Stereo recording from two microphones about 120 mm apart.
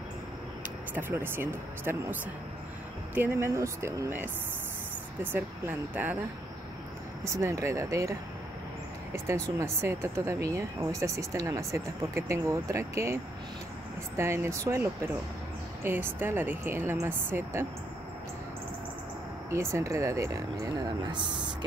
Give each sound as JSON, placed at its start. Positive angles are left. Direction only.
{"t": 0.9, "sound": "speech", "side_deg": -15}
{"t": 3.2, "sound": "speech", "side_deg": -20}
{"t": 7.2, "sound": "speech", "side_deg": -25}
{"t": 9.1, "sound": "speech", "side_deg": -25}
{"t": 19.5, "sound": "speech", "side_deg": -25}